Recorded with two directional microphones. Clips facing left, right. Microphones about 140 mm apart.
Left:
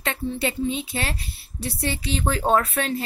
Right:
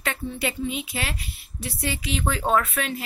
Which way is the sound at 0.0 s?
25° left (ahead or behind).